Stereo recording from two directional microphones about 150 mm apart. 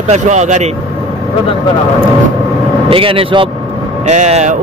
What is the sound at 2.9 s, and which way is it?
Speech, 35° right (ahead or behind).